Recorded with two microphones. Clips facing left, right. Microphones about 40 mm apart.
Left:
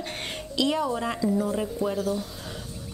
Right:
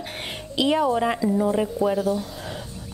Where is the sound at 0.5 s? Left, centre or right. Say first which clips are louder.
Right 5 dB; right.